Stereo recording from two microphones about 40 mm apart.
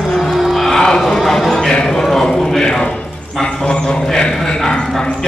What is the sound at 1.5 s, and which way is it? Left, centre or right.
Music, centre.